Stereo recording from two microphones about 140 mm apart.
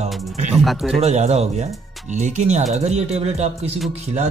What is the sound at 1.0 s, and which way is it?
Speech, 50° right (ahead or behind).